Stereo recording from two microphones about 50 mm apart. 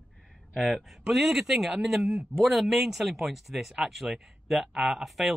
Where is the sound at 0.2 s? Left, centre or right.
Centre.